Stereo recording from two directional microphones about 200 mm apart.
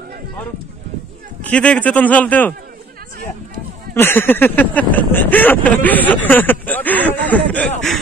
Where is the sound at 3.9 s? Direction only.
10° left (ahead or behind).